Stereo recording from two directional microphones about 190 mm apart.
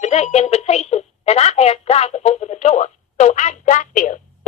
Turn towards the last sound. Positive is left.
turn(degrees=40)  # may be behind; listen again after turning